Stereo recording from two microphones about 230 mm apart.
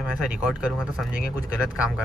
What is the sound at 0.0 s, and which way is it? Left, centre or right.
Speech, centre.